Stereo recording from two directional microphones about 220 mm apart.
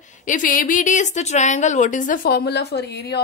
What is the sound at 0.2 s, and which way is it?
A woman's voice, 35° left (ahead or behind).